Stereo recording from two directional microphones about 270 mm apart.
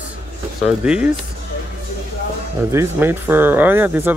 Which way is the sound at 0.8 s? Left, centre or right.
Centre.